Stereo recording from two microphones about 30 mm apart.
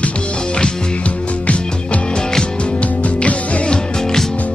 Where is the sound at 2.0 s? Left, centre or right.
Left.